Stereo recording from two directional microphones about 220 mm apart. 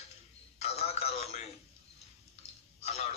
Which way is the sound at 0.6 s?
30° left (ahead or behind).